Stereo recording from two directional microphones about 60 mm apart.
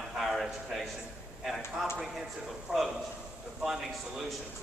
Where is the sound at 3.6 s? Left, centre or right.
Centre.